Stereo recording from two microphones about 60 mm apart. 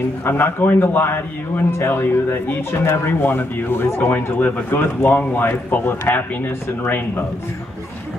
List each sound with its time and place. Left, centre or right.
0.2 s speech: left